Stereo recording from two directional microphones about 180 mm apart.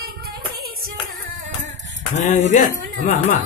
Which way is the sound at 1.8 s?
90° right.